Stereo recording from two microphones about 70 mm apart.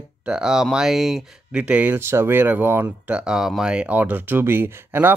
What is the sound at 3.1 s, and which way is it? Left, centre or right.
Speech, centre.